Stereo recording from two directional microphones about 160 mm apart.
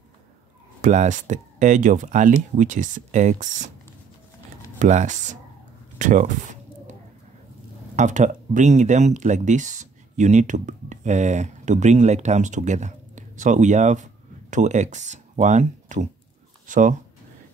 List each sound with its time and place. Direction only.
0.7 s speech: 50° right (ahead or behind)
4.7 s speech: 50° right (ahead or behind)
5.9 s bird: 50° right (ahead or behind)
7.9 s speech: 50° right (ahead or behind)